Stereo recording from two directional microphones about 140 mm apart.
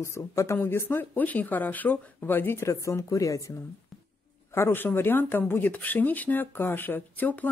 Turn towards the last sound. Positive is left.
turn(degrees=10)  # may be behind; listen again after turning